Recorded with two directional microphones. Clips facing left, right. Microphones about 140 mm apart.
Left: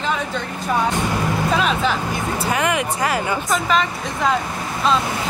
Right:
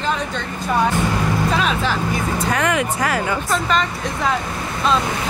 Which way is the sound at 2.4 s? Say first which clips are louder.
Even; 10° left (ahead or behind).